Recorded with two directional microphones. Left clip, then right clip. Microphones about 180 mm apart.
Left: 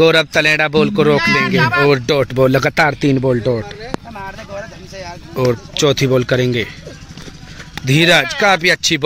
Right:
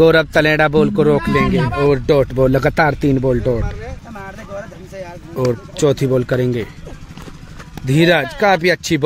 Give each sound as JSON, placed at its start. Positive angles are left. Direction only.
{"t": 0.0, "sound": "speech", "side_deg": -15}
{"t": 1.6, "sound": "speech", "side_deg": 25}
{"t": 1.9, "sound": "speech", "side_deg": -5}
{"t": 5.3, "sound": "speech", "side_deg": 0}
{"t": 7.8, "sound": "speech", "side_deg": -5}